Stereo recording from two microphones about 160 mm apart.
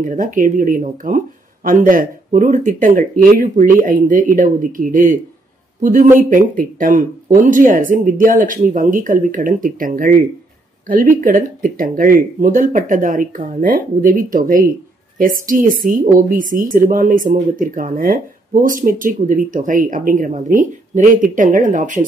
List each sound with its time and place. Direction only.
0.0 s a woman's voice: 55° right (ahead or behind)